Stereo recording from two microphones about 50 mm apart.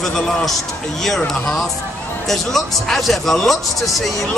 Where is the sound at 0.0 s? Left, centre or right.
Centre.